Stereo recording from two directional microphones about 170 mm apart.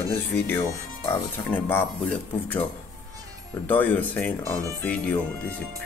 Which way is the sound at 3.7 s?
10° left (ahead or behind).